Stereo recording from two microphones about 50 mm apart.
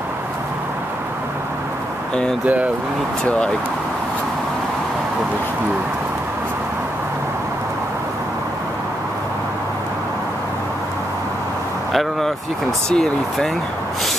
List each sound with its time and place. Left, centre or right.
2.4 s speech: right
11.9 s speech: centre